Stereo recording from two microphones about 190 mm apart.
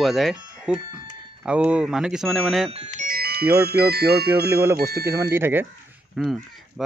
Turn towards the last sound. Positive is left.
turn(degrees=0)  # may be behind; listen again after turning